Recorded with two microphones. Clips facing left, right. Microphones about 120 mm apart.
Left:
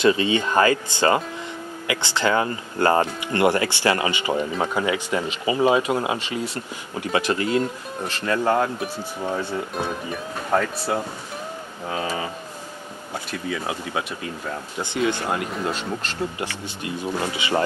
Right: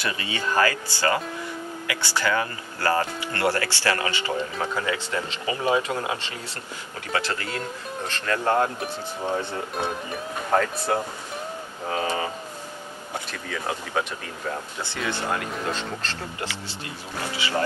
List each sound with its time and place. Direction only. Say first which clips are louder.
0.0 s speech: left 10 dB; 20° left (ahead or behind)
8.7 s speech: left 2 dB; 5° left (ahead or behind)
12.0 s speech: right 1 dB; 25° right (ahead or behind)
13.3 s speech: left 4 dB; 10° left (ahead or behind)